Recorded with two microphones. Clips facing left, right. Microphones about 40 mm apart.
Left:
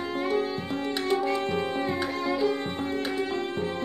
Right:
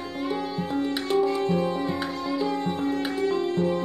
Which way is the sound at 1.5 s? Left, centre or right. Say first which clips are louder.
Right 2 dB; left.